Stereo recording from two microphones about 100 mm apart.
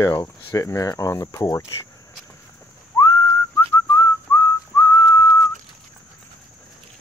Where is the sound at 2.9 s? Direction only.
35° left (ahead or behind).